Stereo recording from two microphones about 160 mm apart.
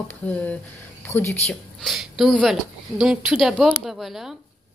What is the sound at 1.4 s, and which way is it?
A woman's voice, centre (ahead or behind).